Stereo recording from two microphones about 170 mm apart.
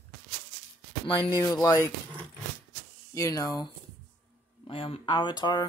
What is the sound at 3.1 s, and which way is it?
Speech, 20° left (ahead or behind).